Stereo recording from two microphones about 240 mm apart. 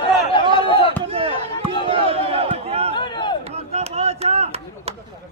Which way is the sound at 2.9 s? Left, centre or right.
Centre.